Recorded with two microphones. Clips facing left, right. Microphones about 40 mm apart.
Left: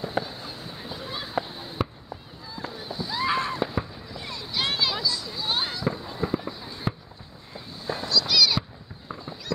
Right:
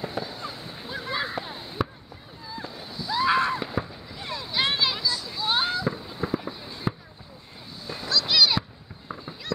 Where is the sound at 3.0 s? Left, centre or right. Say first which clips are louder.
Right 2 dB; left.